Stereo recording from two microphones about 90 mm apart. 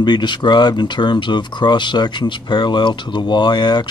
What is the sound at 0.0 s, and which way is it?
Speech, 55° left (ahead or behind).